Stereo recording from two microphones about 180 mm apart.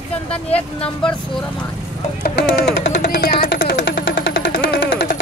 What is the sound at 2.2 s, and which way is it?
Speech, 70° left (ahead or behind).